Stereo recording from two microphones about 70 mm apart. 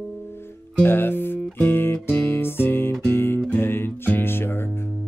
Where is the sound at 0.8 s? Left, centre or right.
Left.